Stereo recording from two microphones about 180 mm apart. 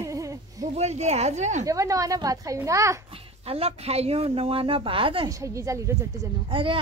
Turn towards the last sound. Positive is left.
turn(degrees=-30)  # may be behind; listen again after turning